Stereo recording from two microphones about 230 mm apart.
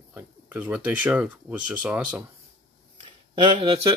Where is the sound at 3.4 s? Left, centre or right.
Right.